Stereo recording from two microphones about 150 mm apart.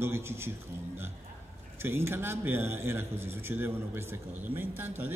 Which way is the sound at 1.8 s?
15° right (ahead or behind).